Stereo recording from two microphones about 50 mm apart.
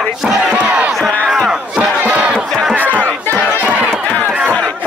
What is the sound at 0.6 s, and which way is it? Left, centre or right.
Crowd, right.